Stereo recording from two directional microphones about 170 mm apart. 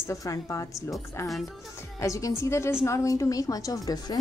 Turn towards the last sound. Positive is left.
turn(degrees=20)  # may be behind; listen again after turning